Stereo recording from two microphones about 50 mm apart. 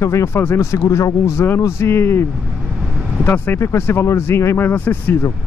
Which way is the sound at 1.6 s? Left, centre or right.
Left.